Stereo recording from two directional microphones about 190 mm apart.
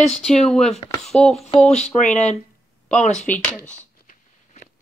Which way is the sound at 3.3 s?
10° left (ahead or behind).